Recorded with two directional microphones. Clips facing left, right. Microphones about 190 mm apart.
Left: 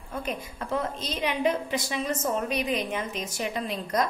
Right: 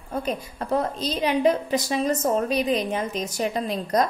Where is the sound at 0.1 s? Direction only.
35° right (ahead or behind).